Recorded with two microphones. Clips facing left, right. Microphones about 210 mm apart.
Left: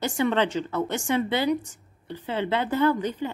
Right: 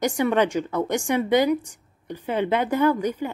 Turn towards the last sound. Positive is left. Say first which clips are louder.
# right 2 dB
turn(degrees=-10)  # may be behind; listen again after turning